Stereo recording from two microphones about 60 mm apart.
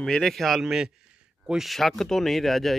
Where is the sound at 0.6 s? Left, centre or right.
Centre.